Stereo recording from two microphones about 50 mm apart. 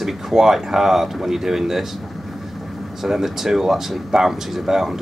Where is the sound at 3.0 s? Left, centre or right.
Centre.